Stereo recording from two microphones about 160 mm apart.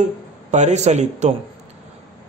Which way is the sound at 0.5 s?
45° right (ahead or behind).